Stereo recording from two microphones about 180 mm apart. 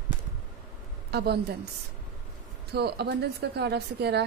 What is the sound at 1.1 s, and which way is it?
Speech, 65° right (ahead or behind).